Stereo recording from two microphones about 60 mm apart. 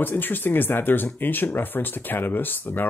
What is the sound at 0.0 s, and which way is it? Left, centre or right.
Speech, left.